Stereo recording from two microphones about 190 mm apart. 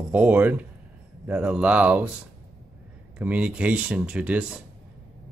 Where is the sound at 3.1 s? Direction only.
5° right (ahead or behind).